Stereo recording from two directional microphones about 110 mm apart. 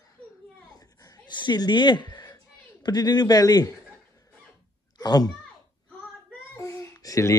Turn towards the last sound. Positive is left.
turn(degrees=30)  # may be behind; listen again after turning